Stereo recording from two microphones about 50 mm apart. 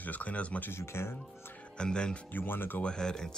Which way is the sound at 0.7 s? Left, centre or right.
Left.